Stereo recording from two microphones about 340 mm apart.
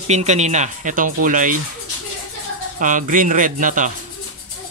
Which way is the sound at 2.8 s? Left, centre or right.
Right.